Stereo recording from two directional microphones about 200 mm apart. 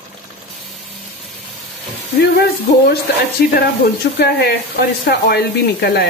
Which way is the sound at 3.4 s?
45° left (ahead or behind).